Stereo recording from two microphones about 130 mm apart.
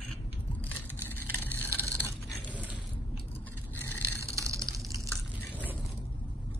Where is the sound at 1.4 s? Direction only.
15° left (ahead or behind).